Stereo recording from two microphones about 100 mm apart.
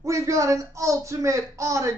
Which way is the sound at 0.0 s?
30° right (ahead or behind).